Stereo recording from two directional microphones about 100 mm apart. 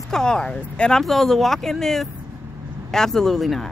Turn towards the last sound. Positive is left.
turn(degrees=5)  # may be behind; listen again after turning